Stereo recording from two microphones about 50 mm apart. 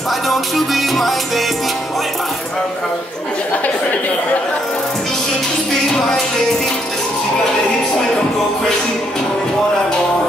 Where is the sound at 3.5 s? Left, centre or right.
Left.